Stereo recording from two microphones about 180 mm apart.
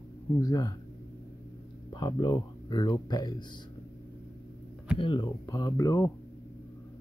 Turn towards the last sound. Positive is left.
turn(degrees=20)  # may be behind; listen again after turning